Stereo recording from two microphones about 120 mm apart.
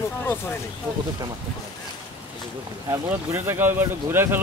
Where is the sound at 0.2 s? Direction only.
20° left (ahead or behind).